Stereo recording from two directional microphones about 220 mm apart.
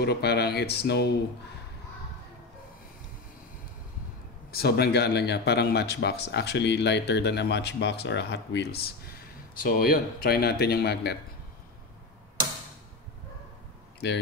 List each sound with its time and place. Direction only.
0.0 s speech: 50° left (ahead or behind)
4.5 s speech: 45° left (ahead or behind)
13.9 s speech: 50° left (ahead or behind)